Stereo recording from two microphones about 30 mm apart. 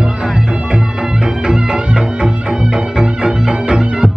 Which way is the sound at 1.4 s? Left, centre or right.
Right.